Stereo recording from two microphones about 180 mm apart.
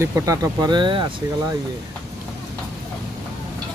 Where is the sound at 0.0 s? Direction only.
20° right (ahead or behind).